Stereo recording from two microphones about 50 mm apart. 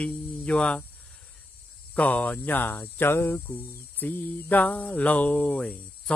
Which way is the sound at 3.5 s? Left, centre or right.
Left.